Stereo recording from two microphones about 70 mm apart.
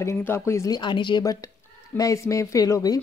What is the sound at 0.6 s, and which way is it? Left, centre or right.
Speech, left.